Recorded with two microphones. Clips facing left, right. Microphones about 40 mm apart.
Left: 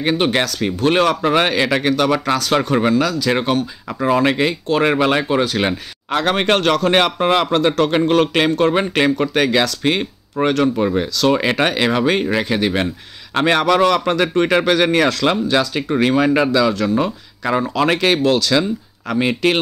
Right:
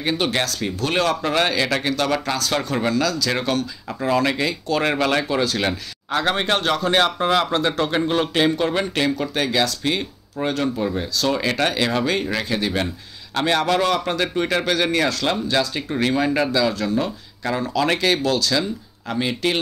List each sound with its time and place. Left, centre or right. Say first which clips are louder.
0.0 s speech: left 5 dB; left
1.2 s speech: left 4 dB; left
1.8 s speech: left 5 dB; left
3.3 s speech: left 5 dB; left
4.8 s speech: left 4 dB; left
6.2 s a man's voice: left 5 dB; left
6.9 s speech: left 1 dB; left
7.5 s a man's voice: left 5 dB; left
14.5 s speech: left 5 dB; left
16.2 s speech: left 4 dB; left